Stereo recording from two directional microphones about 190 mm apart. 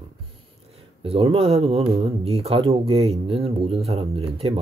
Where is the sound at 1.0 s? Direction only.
30° right (ahead or behind).